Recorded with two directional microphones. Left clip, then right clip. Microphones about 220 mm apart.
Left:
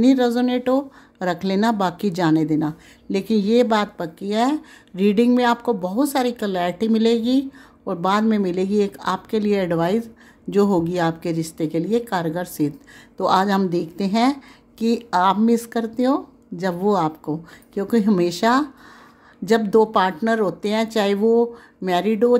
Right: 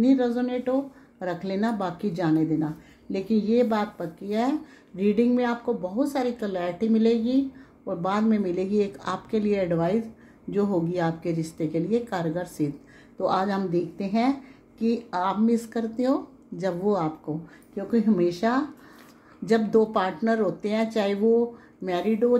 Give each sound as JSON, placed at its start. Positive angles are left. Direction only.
{"t": 0.0, "sound": "speech", "side_deg": 50}